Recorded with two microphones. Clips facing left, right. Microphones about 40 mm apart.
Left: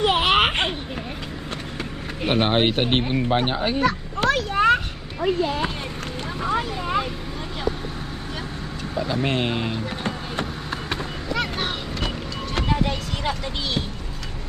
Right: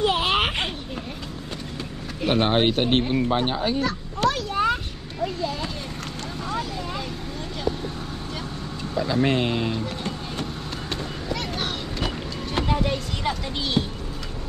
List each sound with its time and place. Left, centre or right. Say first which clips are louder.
0.0 s a sound: left 3 dB; left
2.2 s speech: even; centre
4.3 s a sound: left 5 dB; left
5.2 s speech: left 5 dB; left
8.9 s speech: right 2 dB; left
10.4 s vehicle: left 2 dB; centre
12.7 s vehicle: even; centre
13.8 s speech: right 3 dB; centre